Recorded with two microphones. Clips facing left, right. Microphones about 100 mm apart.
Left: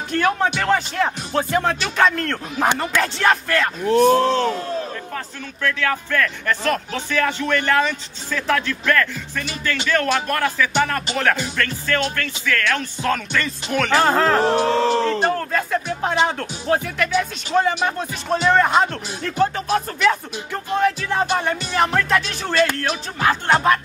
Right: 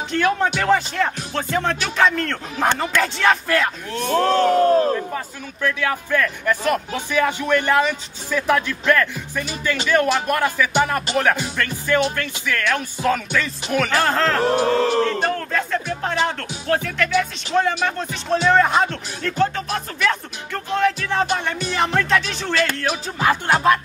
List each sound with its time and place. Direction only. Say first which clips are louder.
0.1 s music: even; 5° left (ahead or behind)
4.2 s speech: right 4 dB; 55° right (ahead or behind)
5.1 s speech: right 1 dB; 15° right (ahead or behind)
13.9 s music: left 4 dB; 10° left (ahead or behind)